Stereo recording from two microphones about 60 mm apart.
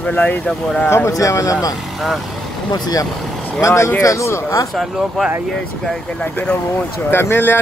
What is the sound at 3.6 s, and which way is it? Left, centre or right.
Speech, left.